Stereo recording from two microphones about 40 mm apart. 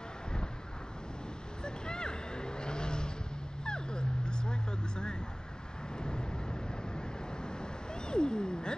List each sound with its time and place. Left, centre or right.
1.6 s vehicle: left
3.6 s dog: left
5.9 s vehicle: left